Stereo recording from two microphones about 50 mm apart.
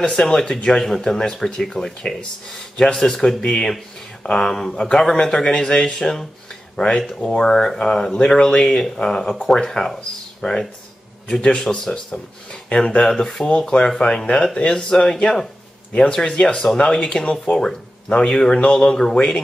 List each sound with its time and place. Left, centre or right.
0.2 s speech: centre
13.5 s speech: centre
19.1 s speech: left